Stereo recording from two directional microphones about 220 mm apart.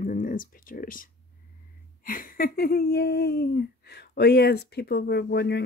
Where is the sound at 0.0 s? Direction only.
35° left (ahead or behind).